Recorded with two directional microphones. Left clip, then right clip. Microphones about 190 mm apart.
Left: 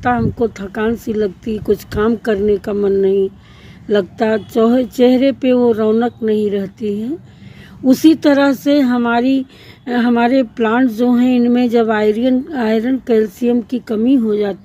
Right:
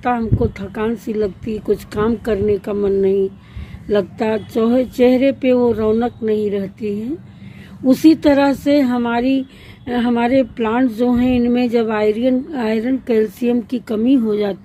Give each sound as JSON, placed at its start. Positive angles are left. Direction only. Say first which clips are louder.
{"t": 0.0, "sound": "speech", "louder": "left 3 dB", "side_deg": 25}